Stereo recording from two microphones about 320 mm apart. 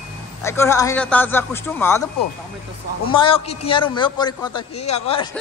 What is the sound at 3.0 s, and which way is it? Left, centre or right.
Speech, centre.